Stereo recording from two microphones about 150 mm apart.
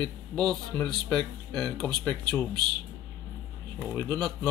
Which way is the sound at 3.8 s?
10° left (ahead or behind).